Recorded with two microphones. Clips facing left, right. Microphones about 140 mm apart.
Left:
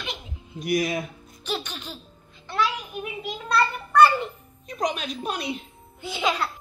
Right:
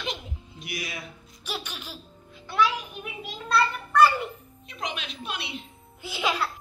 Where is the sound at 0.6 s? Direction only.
45° left (ahead or behind).